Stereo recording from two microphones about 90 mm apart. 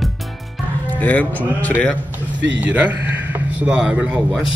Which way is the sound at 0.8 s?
15° left (ahead or behind).